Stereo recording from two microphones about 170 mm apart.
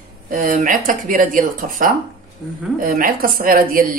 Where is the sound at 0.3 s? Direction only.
50° right (ahead or behind).